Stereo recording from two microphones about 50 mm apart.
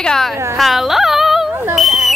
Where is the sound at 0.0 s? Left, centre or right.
Centre.